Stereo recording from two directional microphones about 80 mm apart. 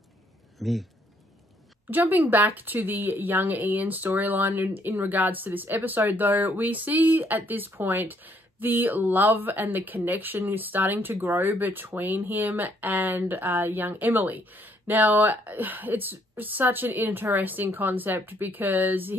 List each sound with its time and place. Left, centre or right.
0.6 s speech: centre
1.9 s speech: right